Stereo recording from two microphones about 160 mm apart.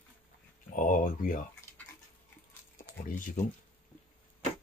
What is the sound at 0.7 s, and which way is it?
Speech, 55° left (ahead or behind).